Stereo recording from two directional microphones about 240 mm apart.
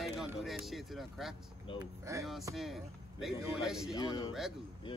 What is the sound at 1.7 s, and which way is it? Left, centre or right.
Speech, centre.